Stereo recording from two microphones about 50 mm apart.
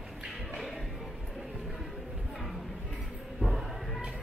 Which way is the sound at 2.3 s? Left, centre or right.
Centre.